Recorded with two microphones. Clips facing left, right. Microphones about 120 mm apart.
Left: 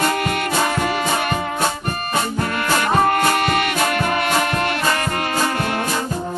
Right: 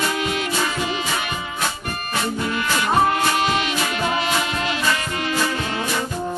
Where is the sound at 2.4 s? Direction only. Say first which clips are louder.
Left 3 dB; 50° left (ahead or behind).